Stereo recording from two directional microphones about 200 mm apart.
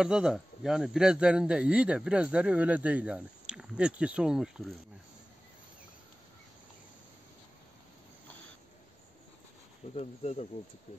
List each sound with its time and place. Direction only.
0.0 s speech: 5° right (ahead or behind)
9.9 s speech: 35° left (ahead or behind)